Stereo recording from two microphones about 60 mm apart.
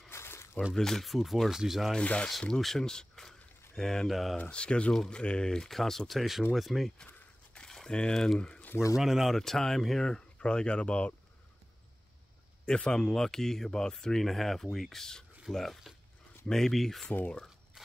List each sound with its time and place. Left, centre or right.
0.1 s a sound: left
0.7 s speech: centre
2.0 s speech: centre
4.4 s speech: centre
4.9 s speech: centre
7.5 s a sound: centre
8.9 s speech: centre
9.4 s speech: centre
12.6 s speech: centre
17.8 s scissors: centre